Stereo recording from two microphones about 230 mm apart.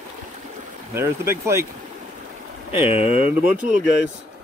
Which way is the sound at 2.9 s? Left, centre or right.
Left.